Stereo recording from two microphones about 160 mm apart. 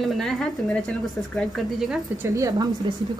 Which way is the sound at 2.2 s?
20° right (ahead or behind).